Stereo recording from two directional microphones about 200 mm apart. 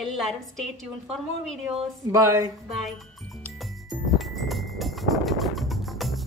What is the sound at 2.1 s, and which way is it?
Speech, 15° right (ahead or behind).